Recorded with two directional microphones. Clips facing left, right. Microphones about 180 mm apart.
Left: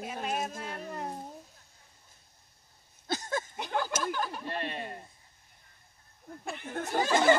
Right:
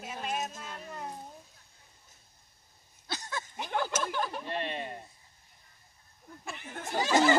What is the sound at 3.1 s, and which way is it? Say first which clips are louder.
Speech: left 6 dB; 50° left (ahead or behind).